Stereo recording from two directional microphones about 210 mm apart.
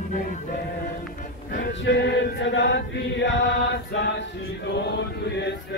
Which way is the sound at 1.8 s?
55° left (ahead or behind).